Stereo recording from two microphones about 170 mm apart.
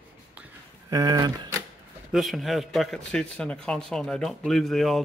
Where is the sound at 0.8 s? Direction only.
20° right (ahead or behind).